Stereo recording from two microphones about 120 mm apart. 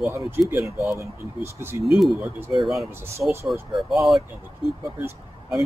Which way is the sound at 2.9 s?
20° right (ahead or behind).